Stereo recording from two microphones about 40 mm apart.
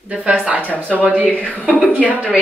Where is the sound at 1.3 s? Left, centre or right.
Left.